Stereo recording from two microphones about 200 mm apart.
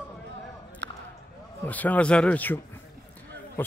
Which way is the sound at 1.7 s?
10° left (ahead or behind).